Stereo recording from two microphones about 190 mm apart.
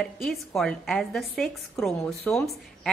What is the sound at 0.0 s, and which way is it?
A woman's voice, centre (ahead or behind).